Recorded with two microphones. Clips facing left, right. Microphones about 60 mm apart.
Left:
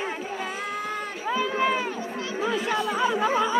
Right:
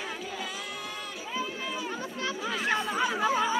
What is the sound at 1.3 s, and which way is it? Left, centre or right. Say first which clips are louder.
Run: left 11 dB; left.